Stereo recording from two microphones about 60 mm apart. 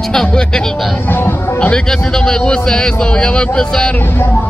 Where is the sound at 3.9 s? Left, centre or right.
Left.